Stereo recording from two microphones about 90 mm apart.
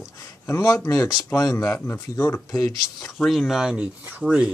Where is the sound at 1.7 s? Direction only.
25° left (ahead or behind).